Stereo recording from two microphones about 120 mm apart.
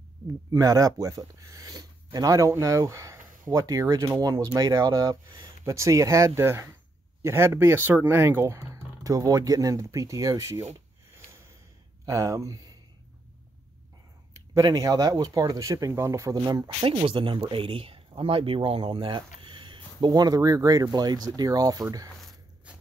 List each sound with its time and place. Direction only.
0.5 s speech: 30° right (ahead or behind)
12.1 s speech: 25° right (ahead or behind)
14.5 s speech: 30° right (ahead or behind)
22.7 s a sound: 10° right (ahead or behind)